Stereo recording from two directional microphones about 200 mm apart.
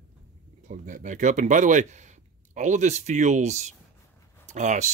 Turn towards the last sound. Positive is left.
turn(degrees=-35)  # may be behind; listen again after turning